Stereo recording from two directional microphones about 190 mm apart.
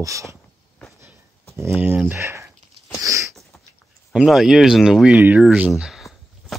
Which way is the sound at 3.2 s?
Centre (ahead or behind).